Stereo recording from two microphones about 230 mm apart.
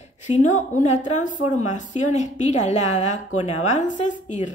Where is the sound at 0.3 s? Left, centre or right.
Left.